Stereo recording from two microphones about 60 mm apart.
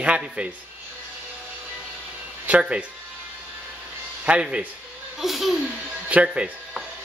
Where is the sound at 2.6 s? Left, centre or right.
Centre.